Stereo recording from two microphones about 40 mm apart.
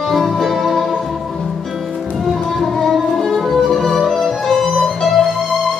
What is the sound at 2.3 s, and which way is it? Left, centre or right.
Music, centre.